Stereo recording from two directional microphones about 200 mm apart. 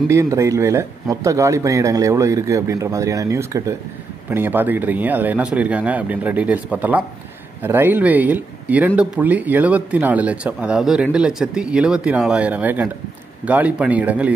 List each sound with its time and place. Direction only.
0.1 s speech: 15° right (ahead or behind)